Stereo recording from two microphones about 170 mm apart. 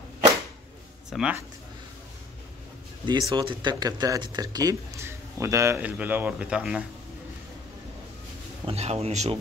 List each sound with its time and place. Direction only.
1.1 s speech: 5° right (ahead or behind)
3.1 s speech: 25° right (ahead or behind); by 6.8 s 5° right (ahead or behind)
8.6 s speech: 40° right (ahead or behind)